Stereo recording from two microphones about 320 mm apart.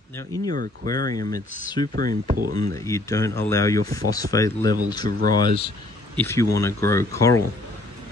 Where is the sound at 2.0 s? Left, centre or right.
Right.